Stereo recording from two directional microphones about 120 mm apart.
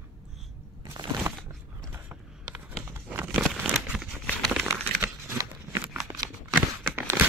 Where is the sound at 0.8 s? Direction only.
30° right (ahead or behind).